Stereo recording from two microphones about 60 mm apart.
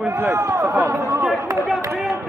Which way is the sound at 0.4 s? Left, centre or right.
Right.